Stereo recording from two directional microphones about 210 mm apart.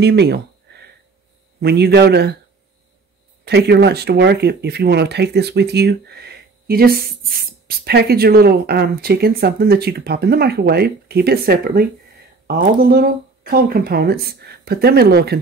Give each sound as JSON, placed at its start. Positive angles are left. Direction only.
{"t": 0.0, "sound": "a sound", "side_deg": -50}
{"t": 1.6, "sound": "speech", "side_deg": -50}
{"t": 3.4, "sound": "speech", "side_deg": -50}